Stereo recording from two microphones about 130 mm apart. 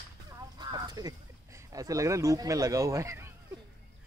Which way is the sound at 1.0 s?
30° right (ahead or behind).